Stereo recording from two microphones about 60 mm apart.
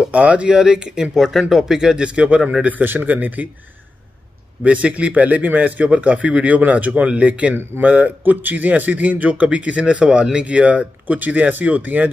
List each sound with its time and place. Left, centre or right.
0.0 s speech: right
2.8 s a man's voice: right
4.6 s a man's voice: centre